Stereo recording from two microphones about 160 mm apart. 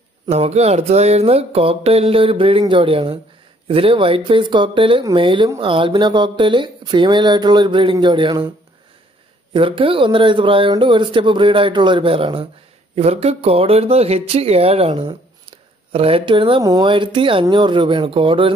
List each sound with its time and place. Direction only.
0.3 s speech: 40° right (ahead or behind)
9.5 s speech: 35° right (ahead or behind)